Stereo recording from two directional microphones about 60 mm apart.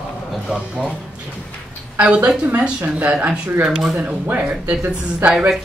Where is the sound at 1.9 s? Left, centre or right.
Centre.